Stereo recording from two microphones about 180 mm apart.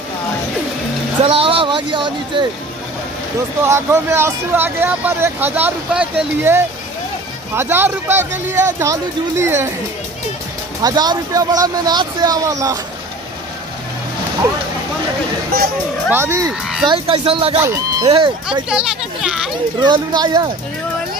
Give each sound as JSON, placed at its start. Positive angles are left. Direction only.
{"t": 1.2, "sound": "speech", "side_deg": -30}
{"t": 3.6, "sound": "speech", "side_deg": -15}
{"t": 10.8, "sound": "speech", "side_deg": -20}
{"t": 16.1, "sound": "speech", "side_deg": -15}
{"t": 16.8, "sound": "speech", "side_deg": -30}
{"t": 17.6, "sound": "speech", "side_deg": -15}
{"t": 18.0, "sound": "speech", "side_deg": -30}
{"t": 18.7, "sound": "a child's voice", "side_deg": -5}
{"t": 19.8, "sound": "speech", "side_deg": -25}